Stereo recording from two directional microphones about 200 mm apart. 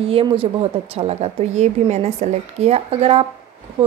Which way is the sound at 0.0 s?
25° right (ahead or behind).